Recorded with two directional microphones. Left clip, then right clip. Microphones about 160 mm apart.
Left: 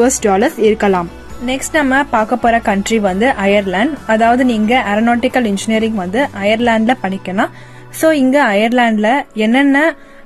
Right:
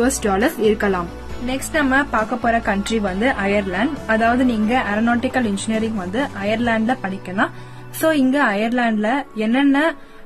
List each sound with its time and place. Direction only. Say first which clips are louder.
0.0 s a woman's voice: left 6 dB; 25° left (ahead or behind)